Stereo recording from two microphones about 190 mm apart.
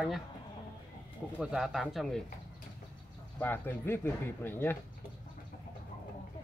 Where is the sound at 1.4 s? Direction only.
5° right (ahead or behind).